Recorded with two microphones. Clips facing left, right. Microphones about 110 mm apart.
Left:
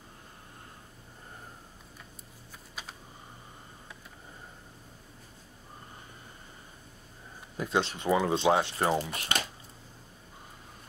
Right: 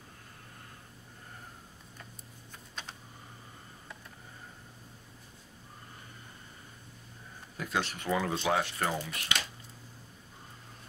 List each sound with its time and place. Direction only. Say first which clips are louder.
2.7 s computer keyboard: even; 5° left (ahead or behind)
7.5 s speech: left 4 dB; 25° left (ahead or behind)